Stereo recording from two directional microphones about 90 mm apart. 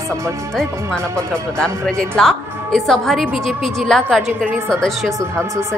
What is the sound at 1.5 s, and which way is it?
A woman's voice, 10° left (ahead or behind).